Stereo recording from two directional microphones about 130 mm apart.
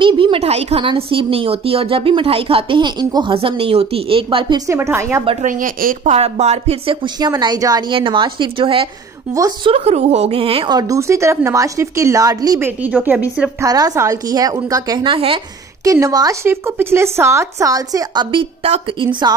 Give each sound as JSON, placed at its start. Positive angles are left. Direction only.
{"t": 0.0, "sound": "speech", "side_deg": -40}
{"t": 3.3, "sound": "speech", "side_deg": -45}
{"t": 4.6, "sound": "speech", "side_deg": -20}
{"t": 5.4, "sound": "speech", "side_deg": -90}
{"t": 6.1, "sound": "speech", "side_deg": -55}
{"t": 7.2, "sound": "speech", "side_deg": -30}
{"t": 9.7, "sound": "speech", "side_deg": -55}
{"t": 10.8, "sound": "speech", "side_deg": -25}
{"t": 12.5, "sound": "speech", "side_deg": -15}
{"t": 13.6, "sound": "speech", "side_deg": -30}
{"t": 15.1, "sound": "speech", "side_deg": -45}
{"t": 15.8, "sound": "speech", "side_deg": -25}